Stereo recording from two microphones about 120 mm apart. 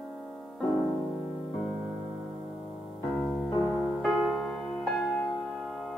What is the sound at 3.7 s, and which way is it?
Music, centre (ahead or behind).